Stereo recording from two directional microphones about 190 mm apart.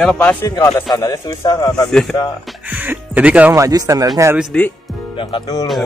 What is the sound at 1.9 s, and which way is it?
Speech, 5° left (ahead or behind).